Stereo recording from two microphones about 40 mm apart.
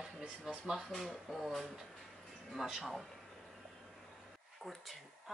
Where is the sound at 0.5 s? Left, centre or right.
Centre.